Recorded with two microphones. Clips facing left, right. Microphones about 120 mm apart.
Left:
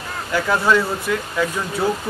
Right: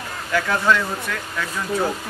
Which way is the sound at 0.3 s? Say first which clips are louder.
Left 2 dB; 10° left (ahead or behind).